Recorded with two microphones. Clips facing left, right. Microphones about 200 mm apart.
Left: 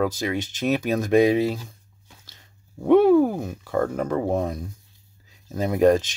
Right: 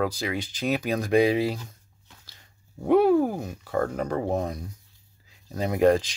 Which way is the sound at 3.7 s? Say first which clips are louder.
Left 3 dB; 50° left (ahead or behind).